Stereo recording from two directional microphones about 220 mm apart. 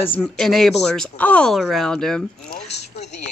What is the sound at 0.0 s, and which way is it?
Speech, 5° left (ahead or behind).